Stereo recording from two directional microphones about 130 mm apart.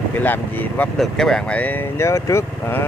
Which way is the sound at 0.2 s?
15° left (ahead or behind).